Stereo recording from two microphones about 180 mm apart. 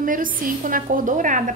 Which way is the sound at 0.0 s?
50° right (ahead or behind).